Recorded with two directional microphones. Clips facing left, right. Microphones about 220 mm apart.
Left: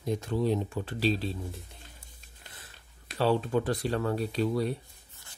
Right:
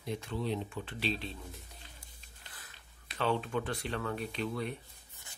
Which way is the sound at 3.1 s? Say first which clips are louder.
Left 6 dB; 35° left (ahead or behind).